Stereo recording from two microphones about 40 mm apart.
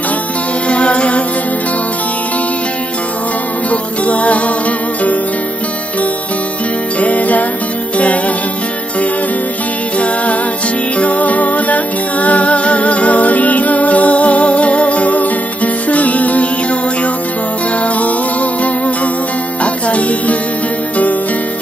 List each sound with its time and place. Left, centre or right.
0.7 s music: left
3.7 s music: left
7.0 s music: left
9.9 s music: left
17.8 s music: left